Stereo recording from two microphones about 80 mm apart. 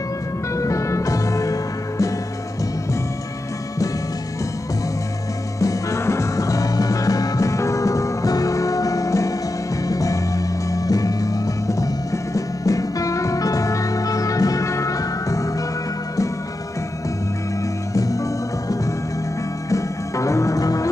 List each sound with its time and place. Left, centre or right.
0.6 s music: left
5.6 s music: left
17.9 s music: left
19.7 s music: left